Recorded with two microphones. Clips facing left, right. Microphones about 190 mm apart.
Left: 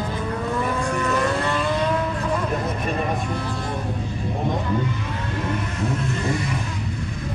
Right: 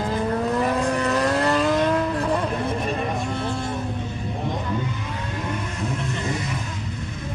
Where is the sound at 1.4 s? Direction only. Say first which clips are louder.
Right 3 dB; 40° right (ahead or behind).